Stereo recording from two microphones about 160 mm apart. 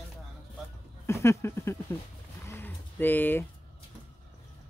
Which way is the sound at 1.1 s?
15° left (ahead or behind).